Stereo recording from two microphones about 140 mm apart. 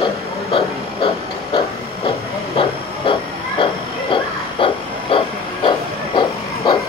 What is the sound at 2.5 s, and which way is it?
Hiss, 35° left (ahead or behind).